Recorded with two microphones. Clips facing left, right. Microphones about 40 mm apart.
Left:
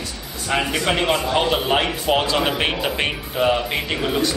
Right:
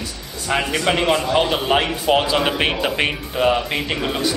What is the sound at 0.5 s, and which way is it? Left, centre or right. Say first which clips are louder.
A man's voice: right 1 dB; centre.